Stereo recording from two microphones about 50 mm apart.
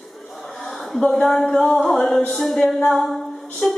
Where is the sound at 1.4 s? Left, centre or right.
Centre.